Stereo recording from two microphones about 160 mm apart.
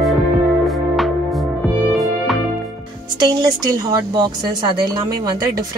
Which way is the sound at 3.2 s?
25° right (ahead or behind).